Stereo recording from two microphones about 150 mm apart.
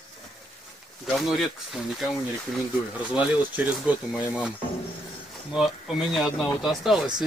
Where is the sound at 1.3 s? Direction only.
Centre (ahead or behind).